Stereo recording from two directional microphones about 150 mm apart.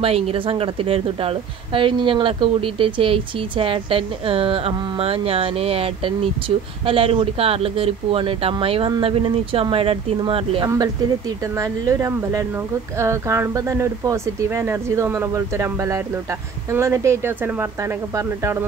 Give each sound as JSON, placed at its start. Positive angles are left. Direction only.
{"t": 0.0, "sound": "a woman's voice", "side_deg": -40}
{"t": 10.7, "sound": "speech", "side_deg": -20}